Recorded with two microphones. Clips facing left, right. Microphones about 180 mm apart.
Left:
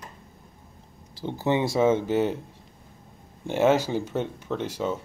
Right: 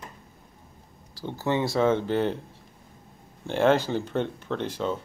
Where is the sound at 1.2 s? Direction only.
20° left (ahead or behind).